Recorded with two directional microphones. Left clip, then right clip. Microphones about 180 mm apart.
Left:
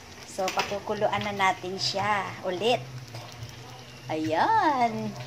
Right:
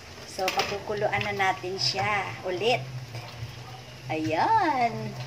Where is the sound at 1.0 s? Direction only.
25° left (ahead or behind).